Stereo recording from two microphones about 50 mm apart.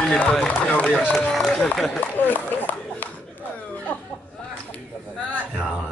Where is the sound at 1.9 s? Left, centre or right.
Left.